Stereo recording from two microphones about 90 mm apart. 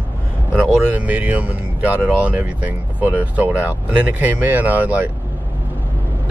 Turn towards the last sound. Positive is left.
turn(degrees=-20)  # may be behind; listen again after turning